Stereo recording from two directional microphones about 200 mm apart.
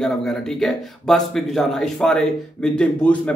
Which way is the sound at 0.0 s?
Centre (ahead or behind).